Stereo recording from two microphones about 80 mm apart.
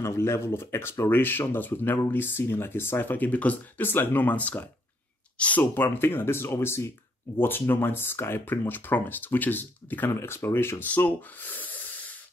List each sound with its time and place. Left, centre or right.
0.0 s speech: left
10.9 s gasp: left